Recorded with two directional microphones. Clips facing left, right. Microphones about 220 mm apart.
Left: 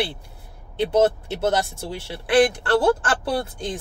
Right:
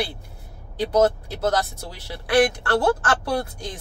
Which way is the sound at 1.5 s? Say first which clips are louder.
Even; 25° left (ahead or behind).